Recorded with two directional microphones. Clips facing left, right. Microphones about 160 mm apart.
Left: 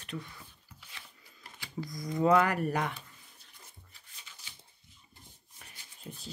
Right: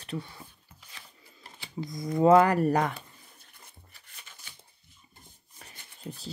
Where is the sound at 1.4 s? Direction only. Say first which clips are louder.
Right 3 dB; 25° right (ahead or behind).